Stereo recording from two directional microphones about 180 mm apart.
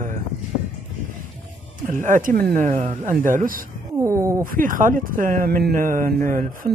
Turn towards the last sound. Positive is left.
turn(degrees=-50)  # may be behind; listen again after turning